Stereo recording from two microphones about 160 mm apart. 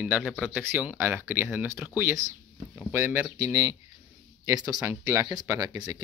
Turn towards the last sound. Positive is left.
turn(degrees=-20)  # may be behind; listen again after turning